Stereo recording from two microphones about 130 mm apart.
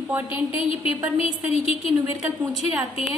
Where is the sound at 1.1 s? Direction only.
50° left (ahead or behind).